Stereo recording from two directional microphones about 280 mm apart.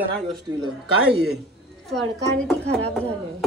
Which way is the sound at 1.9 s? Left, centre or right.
Right.